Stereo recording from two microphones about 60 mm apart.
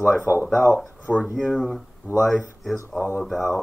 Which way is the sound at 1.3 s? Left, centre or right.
Centre.